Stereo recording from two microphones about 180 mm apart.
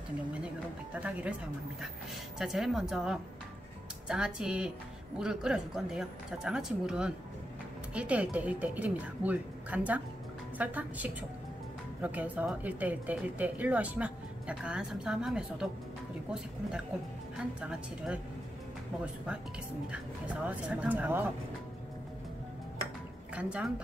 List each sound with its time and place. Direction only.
1.0 s speech: 5° right (ahead or behind)
17.6 s speech: 5° right (ahead or behind)
19.9 s speech: 5° right (ahead or behind)
23.3 s a woman's voice: 5° right (ahead or behind)